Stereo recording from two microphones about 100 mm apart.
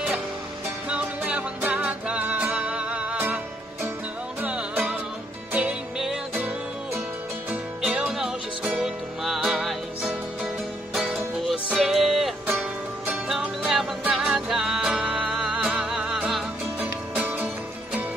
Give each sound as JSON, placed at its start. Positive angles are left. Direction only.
{"t": 0.8, "sound": "music", "side_deg": -10}
{"t": 4.4, "sound": "music", "side_deg": -15}
{"t": 7.8, "sound": "music", "side_deg": -5}
{"t": 16.8, "sound": "music", "side_deg": -15}